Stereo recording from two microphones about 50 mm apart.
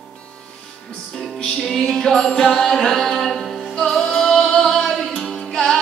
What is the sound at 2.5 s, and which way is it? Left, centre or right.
Music, centre.